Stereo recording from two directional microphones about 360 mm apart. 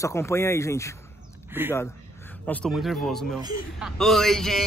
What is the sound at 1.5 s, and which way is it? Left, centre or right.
Speech, centre.